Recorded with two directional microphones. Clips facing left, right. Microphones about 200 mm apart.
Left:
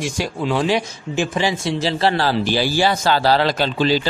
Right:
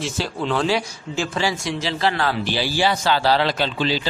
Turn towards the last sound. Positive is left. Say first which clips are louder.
# left 4 dB
turn(degrees=45)  # may be behind; listen again after turning